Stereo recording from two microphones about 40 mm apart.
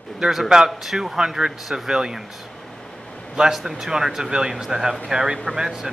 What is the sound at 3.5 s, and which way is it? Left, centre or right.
Speech, centre.